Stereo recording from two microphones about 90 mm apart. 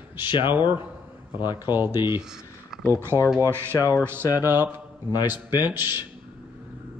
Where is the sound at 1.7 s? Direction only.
60° left (ahead or behind).